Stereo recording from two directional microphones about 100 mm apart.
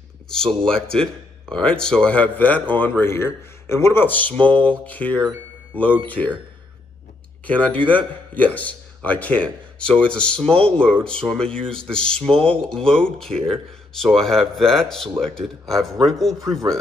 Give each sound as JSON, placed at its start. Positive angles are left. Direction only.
{"t": 0.3, "sound": "a man's voice", "side_deg": 5}
{"t": 4.4, "sound": "a sound", "side_deg": -55}
{"t": 4.6, "sound": "a man's voice", "side_deg": 15}
{"t": 7.4, "sound": "a man's voice", "side_deg": 15}